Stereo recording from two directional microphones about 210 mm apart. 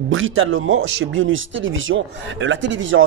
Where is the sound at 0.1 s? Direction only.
70° right (ahead or behind).